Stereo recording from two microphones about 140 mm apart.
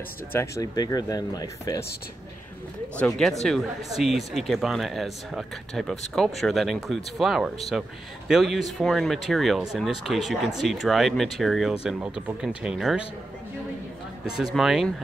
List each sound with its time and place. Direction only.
0.3 s speech: 20° left (ahead or behind)
3.0 s speech: 5° left (ahead or behind)
14.3 s speech: centre (ahead or behind)